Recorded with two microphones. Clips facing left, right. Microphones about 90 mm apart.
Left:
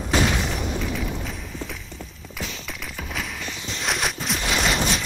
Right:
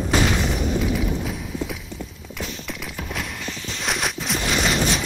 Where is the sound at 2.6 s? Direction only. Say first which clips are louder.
Right 2 dB; centre (ahead or behind).